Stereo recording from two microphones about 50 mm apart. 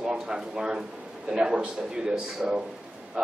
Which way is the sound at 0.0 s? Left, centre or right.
Centre.